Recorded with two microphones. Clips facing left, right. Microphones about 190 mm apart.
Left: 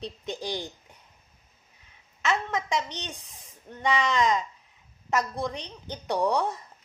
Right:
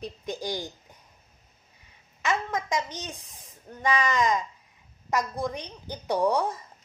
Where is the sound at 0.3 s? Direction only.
5° right (ahead or behind).